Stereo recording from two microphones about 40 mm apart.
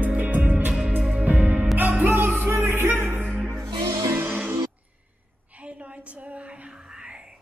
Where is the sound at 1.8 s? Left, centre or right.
Right.